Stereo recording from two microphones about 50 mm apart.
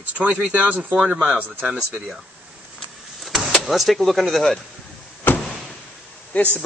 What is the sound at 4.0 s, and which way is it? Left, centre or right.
Speech, centre.